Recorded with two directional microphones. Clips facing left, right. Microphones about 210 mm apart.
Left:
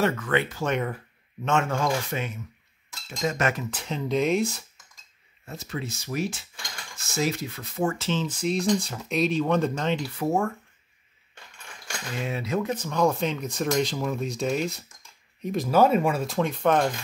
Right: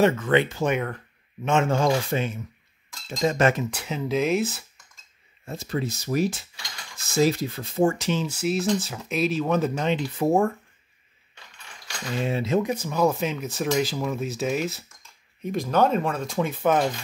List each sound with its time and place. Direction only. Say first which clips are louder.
0.0 s speech: right 5 dB; 20° right (ahead or behind)
0.7 s speech: even; 5° left (ahead or behind)
1.4 s speech: right 3 dB; 20° right (ahead or behind)
3.7 s speech: right 1 dB; 10° right (ahead or behind)
5.4 s speech: right 5 dB; 35° right (ahead or behind)
8.0 s speech: right 1 dB; 10° right (ahead or behind)
12.3 s speech: right 4 dB; 25° right (ahead or behind)
12.6 s speech: right 1 dB; 10° right (ahead or behind)